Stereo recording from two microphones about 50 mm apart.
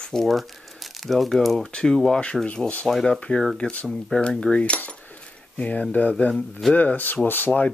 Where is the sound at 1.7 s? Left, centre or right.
Centre.